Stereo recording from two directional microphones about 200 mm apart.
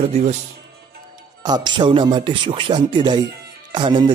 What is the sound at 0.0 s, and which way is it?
Speech, 35° right (ahead or behind).